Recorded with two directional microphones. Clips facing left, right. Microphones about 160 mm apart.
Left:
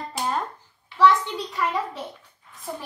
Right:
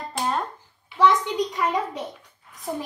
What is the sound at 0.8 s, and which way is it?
Speech, 15° right (ahead or behind).